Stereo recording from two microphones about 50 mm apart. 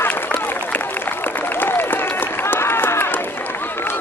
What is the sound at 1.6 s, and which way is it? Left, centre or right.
Applause, left.